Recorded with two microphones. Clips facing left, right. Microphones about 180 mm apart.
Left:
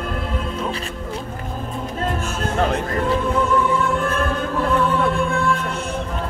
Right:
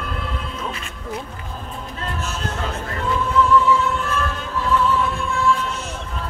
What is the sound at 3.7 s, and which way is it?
Music, 50° left (ahead or behind).